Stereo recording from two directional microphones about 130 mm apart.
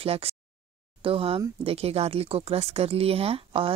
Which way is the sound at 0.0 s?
50° right (ahead or behind).